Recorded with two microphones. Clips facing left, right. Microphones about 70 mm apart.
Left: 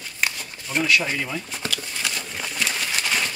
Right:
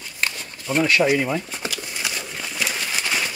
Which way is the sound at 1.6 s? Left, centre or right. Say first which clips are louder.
Even; centre.